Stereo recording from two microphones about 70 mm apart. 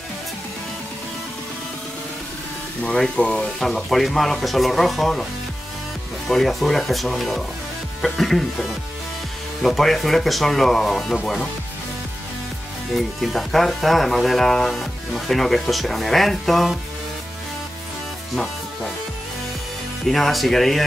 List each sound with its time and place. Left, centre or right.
2.8 s speech: centre
6.2 s speech: centre
12.9 s speech: centre
20.1 s speech: centre